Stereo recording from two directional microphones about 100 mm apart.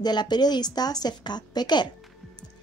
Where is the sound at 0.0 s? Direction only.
45° left (ahead or behind).